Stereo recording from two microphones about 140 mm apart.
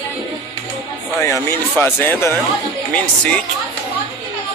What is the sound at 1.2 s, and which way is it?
Speech, 20° left (ahead or behind).